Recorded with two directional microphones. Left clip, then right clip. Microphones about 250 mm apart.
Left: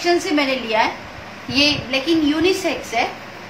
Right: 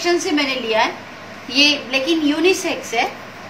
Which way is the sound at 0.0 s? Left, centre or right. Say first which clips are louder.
Even; left.